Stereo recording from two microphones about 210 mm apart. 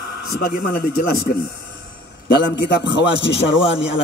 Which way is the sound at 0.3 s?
45° left (ahead or behind).